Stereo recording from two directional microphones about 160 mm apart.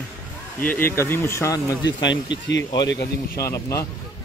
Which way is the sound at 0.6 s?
10° left (ahead or behind).